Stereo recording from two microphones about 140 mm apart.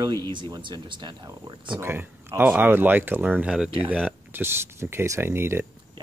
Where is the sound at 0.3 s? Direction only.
35° right (ahead or behind).